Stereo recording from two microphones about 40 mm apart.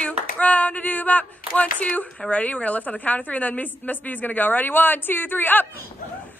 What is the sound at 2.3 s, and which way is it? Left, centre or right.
A woman's voice, left.